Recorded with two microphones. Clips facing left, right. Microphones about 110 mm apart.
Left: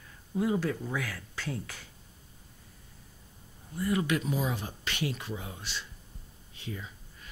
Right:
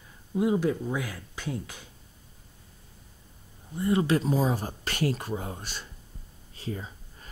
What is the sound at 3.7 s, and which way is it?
Speech, 25° right (ahead or behind).